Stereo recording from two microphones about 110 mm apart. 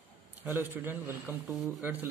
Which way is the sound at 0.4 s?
20° right (ahead or behind).